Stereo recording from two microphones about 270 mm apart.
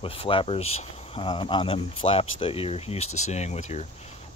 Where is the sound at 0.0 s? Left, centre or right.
Centre.